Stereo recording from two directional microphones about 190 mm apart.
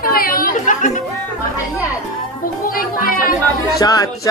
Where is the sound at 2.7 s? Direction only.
50° left (ahead or behind).